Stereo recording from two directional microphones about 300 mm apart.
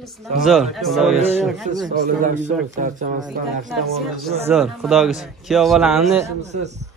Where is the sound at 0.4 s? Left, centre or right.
Centre.